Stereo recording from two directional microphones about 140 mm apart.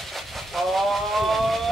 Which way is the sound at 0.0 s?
Centre (ahead or behind).